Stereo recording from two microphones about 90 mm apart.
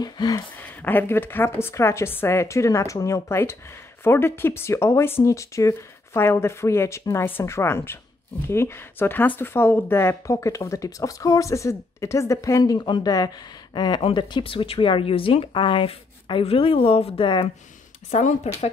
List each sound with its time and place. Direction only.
0.0 s speech: 50° left (ahead or behind)
0.6 s speech: 20° left (ahead or behind)
12.7 s speech: 55° left (ahead or behind)
14.0 s speech: 75° left (ahead or behind)